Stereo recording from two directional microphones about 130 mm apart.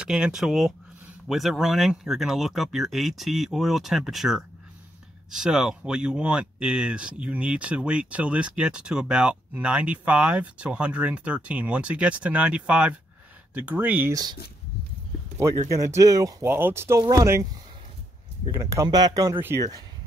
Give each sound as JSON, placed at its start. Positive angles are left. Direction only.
{"t": 0.0, "sound": "speech", "side_deg": -5}
{"t": 15.3, "sound": "speech", "side_deg": -20}